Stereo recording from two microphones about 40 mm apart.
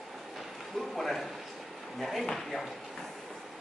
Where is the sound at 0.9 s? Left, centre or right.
Centre.